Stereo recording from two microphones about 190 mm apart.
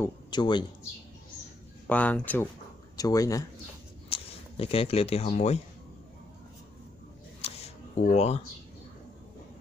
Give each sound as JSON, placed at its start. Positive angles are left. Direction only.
{"t": 0.0, "sound": "speech", "side_deg": 25}
{"t": 1.9, "sound": "speech", "side_deg": 10}
{"t": 4.1, "sound": "speech", "side_deg": 30}
{"t": 7.4, "sound": "a sound", "side_deg": 35}